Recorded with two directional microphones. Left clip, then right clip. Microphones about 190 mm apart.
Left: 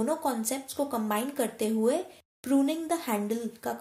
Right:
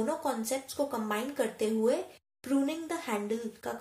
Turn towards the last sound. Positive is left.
turn(degrees=35)  # may be behind; listen again after turning